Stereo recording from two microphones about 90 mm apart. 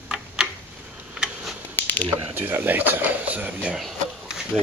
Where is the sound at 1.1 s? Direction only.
5° right (ahead or behind).